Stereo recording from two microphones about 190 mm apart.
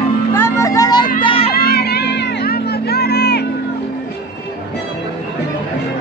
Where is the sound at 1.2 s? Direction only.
30° left (ahead or behind).